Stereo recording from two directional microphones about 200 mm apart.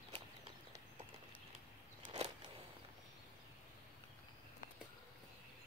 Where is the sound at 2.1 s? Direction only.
30° right (ahead or behind).